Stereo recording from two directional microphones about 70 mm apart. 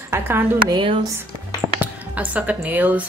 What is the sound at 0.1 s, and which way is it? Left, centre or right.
Speech, right.